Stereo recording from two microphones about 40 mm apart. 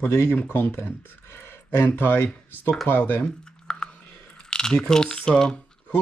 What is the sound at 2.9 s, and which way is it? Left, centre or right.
Speech, left.